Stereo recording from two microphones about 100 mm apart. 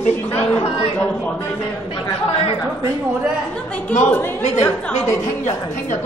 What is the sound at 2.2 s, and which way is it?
Speech, 75° left (ahead or behind).